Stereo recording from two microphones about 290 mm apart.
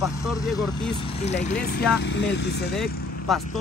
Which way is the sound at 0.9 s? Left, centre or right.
Centre.